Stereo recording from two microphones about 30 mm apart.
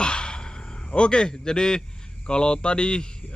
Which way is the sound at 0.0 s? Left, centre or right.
Left.